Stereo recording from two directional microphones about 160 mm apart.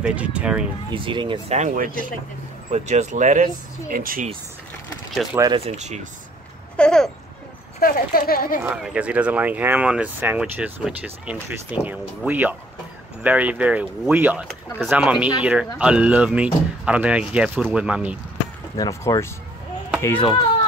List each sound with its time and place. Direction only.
0.0 s speech: 10° right (ahead or behind)
0.9 s speech: 30° right (ahead or behind)
1.5 s speech: 45° right (ahead or behind)
3.9 s speech: 60° right (ahead or behind)
5.5 s speech: 40° right (ahead or behind)
6.8 s speech: 5° left (ahead or behind)
7.8 s speech: 65° left (ahead or behind)
8.6 s speech: 10° right (ahead or behind)
18.8 s speech: 20° left (ahead or behind)